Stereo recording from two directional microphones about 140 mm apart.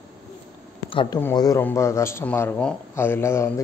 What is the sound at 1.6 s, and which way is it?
A man's voice, 20° left (ahead or behind).